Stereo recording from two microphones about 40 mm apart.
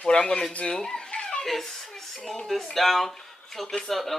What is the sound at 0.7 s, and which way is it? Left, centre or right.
Speech, centre.